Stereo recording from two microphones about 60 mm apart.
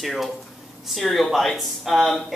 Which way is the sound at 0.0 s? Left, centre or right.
Centre.